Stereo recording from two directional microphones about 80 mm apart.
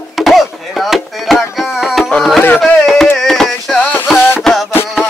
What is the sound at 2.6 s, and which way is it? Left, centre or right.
Carnatic music, centre.